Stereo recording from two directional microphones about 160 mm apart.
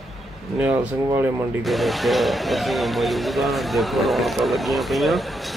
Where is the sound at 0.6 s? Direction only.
10° right (ahead or behind).